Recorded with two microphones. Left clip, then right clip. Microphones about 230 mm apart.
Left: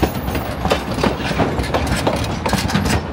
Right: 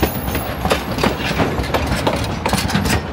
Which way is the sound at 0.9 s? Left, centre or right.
Centre.